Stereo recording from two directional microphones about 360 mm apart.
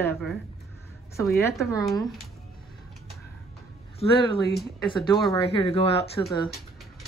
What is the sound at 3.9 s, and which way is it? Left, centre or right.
Speech, centre.